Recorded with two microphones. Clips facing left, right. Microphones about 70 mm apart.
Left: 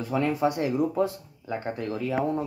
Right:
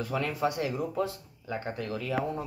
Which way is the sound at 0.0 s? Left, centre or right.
Centre.